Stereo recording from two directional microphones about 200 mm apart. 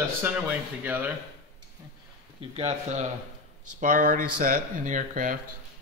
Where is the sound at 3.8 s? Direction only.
45° right (ahead or behind).